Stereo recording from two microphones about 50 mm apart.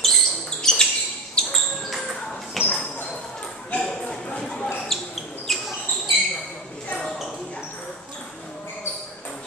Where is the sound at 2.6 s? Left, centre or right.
Centre.